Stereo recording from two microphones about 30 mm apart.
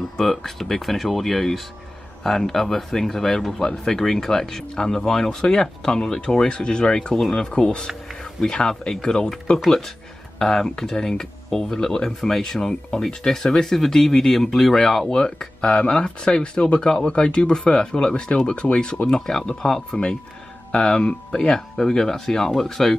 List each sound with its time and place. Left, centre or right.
0.2 s speech: centre
10.4 s speech: centre